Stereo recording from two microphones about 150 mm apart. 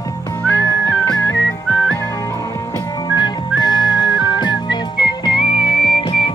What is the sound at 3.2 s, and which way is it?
Whistling, 30° left (ahead or behind).